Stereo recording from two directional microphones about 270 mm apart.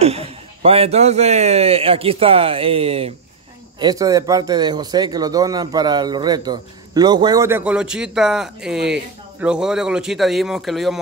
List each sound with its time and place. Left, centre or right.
0.0 s a man's voice: right; by 11.0 s centre